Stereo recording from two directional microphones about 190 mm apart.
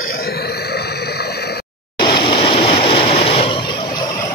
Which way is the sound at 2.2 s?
30° left (ahead or behind).